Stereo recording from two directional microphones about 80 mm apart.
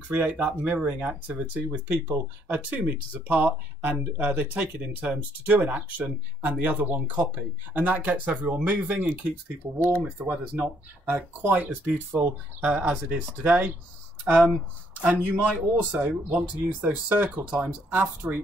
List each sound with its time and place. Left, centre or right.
0.1 s speech: right
15.0 s a man's voice: centre